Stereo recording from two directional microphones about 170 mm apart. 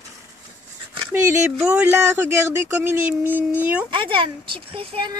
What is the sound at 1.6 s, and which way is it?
Speech, 10° right (ahead or behind).